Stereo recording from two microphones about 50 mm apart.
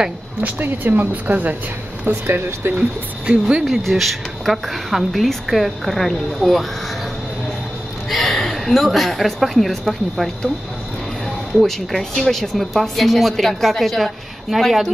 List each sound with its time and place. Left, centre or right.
0.4 s speech: right
2.2 s speech: right
3.3 s speech: centre
3.6 s speech: centre
8.1 s a woman's voice: centre
11.6 s speech: centre